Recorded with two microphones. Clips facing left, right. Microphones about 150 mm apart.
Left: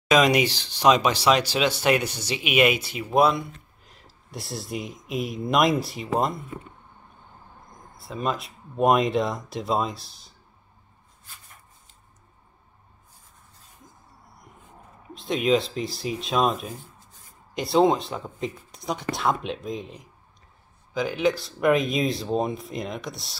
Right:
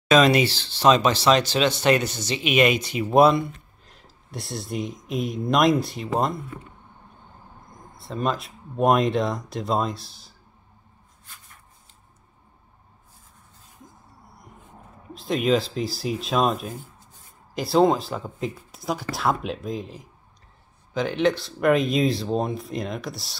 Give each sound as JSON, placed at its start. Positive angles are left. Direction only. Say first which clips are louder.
{"t": 0.1, "sound": "speech", "louder": "right 2 dB", "side_deg": 15}
{"t": 7.9, "sound": "speech", "louder": "right 2 dB", "side_deg": 0}
{"t": 15.1, "sound": "speech", "louder": "right 1 dB", "side_deg": 0}